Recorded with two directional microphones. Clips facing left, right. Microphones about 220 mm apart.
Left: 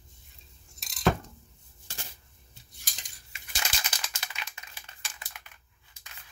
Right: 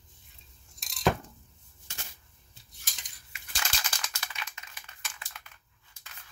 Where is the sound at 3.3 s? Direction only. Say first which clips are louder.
Left 1 dB; 25° left (ahead or behind).